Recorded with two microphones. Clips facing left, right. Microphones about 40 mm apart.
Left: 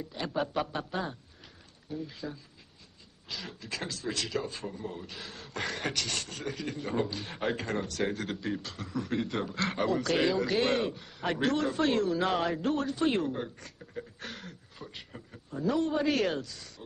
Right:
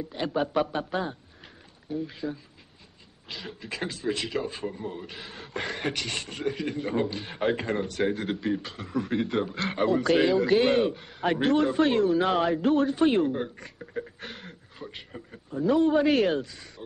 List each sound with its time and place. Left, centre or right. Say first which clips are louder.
0.1 s speech: right 5 dB; centre
15.5 s speech: right 7 dB; centre